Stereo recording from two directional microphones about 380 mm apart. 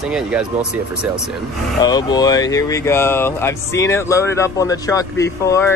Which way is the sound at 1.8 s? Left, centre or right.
Centre.